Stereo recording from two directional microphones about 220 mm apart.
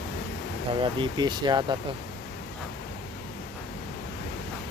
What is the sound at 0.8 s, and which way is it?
Speech, 20° right (ahead or behind).